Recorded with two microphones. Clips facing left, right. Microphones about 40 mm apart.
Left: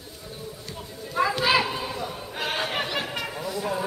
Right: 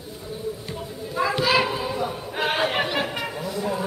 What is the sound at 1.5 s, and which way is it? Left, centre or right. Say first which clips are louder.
Children playing: right 3 dB; centre.